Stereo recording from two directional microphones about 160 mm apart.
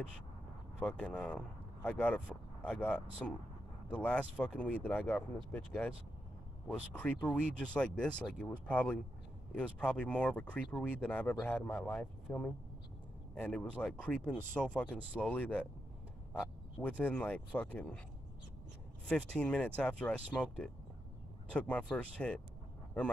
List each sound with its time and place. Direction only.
0.7 s speech: 5° left (ahead or behind)
17.0 s speech: 10° left (ahead or behind)
19.0 s speech: 5° left (ahead or behind)